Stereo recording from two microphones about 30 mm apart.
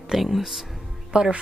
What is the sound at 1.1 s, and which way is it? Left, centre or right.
Speech, right.